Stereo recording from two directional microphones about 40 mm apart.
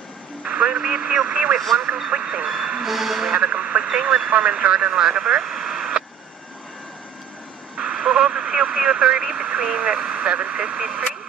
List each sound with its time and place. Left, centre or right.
0.4 s speech: right
2.0 s speech: right
2.8 s a woman's voice: centre
3.3 s speech: right
3.9 s a woman's voice: centre
7.7 s radio: centre